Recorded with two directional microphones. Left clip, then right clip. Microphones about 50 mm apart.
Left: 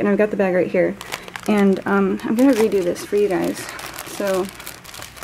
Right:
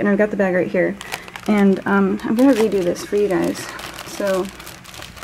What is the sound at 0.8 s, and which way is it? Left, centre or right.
Speech, centre.